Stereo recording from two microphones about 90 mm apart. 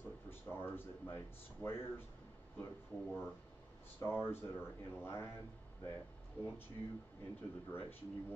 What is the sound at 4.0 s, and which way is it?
Speech, 25° left (ahead or behind).